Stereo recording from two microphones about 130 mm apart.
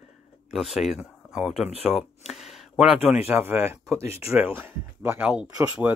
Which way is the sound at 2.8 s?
10° right (ahead or behind).